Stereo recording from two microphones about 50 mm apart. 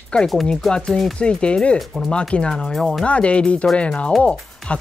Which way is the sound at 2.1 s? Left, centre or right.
Centre.